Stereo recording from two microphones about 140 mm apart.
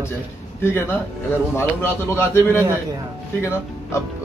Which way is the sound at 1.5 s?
15° left (ahead or behind).